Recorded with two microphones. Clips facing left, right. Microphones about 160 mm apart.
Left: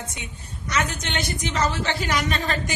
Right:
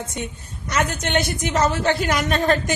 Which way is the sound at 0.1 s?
50° right (ahead or behind).